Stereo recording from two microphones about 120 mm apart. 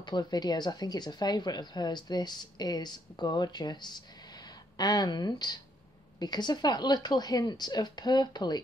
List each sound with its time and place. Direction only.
0.0 s speech: 40° left (ahead or behind)